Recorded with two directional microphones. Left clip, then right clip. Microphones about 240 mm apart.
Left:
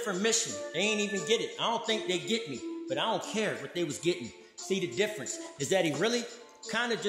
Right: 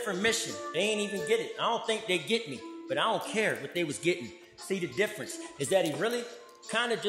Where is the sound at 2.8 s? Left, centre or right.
Centre.